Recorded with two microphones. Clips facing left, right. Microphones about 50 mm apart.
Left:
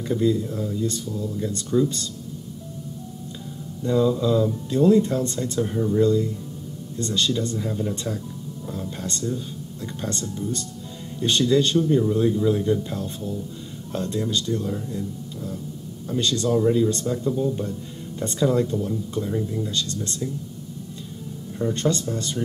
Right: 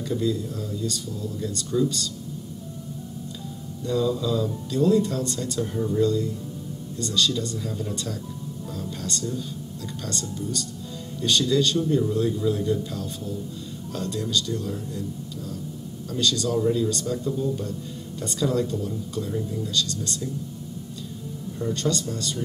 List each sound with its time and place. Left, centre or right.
0.0 s speech: left
3.8 s speech: left
21.5 s speech: left